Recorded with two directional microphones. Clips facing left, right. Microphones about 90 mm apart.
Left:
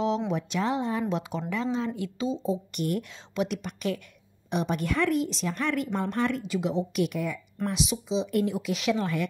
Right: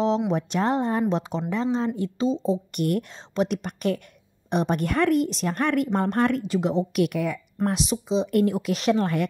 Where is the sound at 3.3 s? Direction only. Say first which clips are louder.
Right 4 dB; 40° right (ahead or behind).